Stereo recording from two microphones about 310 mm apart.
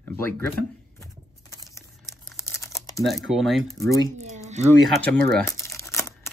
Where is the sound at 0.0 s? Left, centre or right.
Centre.